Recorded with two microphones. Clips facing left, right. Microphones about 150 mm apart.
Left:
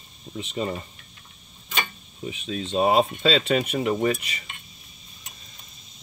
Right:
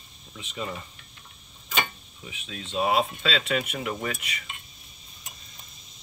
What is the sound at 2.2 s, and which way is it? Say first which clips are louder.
Speech: left 10 dB; 35° left (ahead or behind).